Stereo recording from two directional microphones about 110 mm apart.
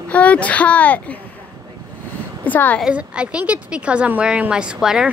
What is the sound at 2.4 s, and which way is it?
Speech, 15° left (ahead or behind).